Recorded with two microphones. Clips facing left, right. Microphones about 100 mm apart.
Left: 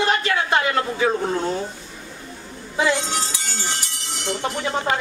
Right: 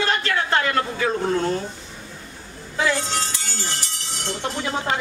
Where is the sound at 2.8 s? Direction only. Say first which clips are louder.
Left 2 dB; 20° left (ahead or behind).